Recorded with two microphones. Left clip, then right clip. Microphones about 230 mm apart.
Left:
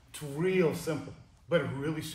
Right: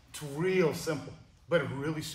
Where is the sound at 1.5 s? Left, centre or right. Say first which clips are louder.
Even; centre.